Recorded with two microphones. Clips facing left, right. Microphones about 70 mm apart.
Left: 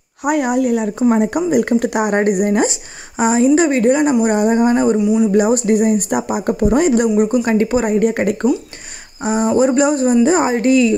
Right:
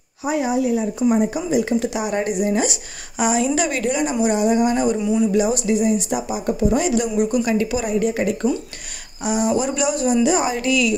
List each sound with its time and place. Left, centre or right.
0.2 s a woman's voice: left
1.1 s a woman's voice: left
1.5 s speech: left
2.6 s a woman's voice: left
5.0 s speech: centre
5.3 s speech: left
9.2 s a woman's voice: left